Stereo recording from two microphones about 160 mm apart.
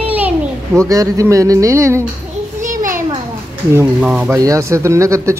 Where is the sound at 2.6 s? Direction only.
55° right (ahead or behind).